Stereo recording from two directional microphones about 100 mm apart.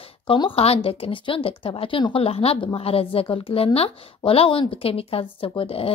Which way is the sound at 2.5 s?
65° left (ahead or behind).